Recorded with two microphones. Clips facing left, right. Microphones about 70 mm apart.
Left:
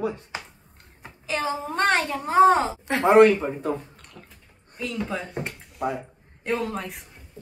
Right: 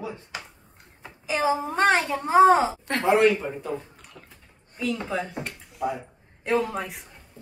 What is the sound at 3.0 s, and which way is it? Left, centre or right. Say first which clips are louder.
Speech: left 5 dB; left.